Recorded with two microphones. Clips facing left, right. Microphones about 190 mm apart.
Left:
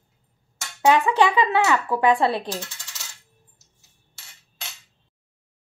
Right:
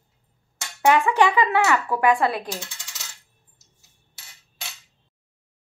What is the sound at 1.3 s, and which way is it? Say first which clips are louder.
A woman's voice: even; 15° left (ahead or behind).